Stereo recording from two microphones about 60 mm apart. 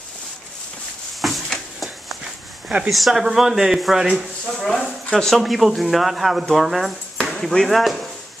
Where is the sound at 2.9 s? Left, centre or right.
Centre.